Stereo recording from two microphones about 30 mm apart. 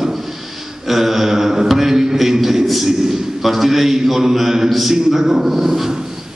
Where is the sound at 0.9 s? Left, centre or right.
Centre.